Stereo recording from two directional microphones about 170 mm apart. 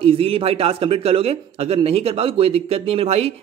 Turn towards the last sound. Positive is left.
turn(degrees=-35)  # may be behind; listen again after turning